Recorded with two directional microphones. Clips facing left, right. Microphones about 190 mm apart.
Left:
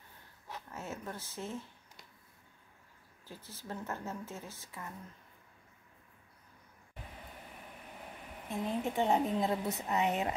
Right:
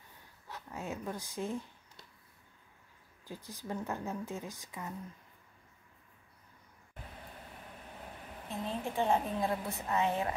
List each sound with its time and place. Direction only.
0.7 s speech: 15° right (ahead or behind)
3.3 s a woman's voice: 15° right (ahead or behind)
8.5 s a woman's voice: 15° left (ahead or behind)